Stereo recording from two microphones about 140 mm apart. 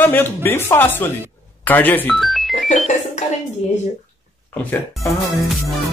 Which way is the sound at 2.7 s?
55° left (ahead or behind).